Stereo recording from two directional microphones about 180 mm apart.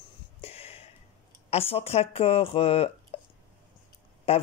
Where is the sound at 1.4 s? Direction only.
35° left (ahead or behind).